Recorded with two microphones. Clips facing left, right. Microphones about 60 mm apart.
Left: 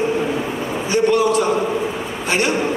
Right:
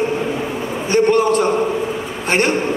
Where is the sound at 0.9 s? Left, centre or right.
Right.